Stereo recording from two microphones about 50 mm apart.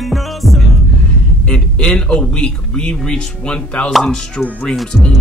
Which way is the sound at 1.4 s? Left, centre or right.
Left.